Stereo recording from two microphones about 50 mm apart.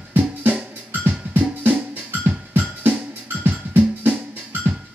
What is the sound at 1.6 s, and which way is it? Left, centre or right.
Music, right.